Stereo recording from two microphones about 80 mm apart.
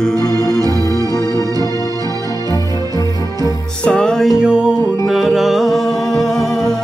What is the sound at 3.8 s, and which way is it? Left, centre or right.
Music, centre.